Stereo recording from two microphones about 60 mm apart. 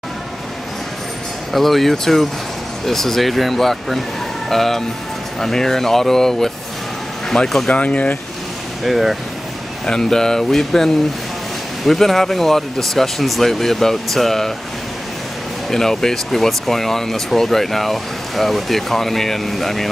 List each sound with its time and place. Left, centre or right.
1.5 s speech: centre
7.7 s speech: left
8.8 s speech: centre
9.8 s speech: centre
15.7 s speech: centre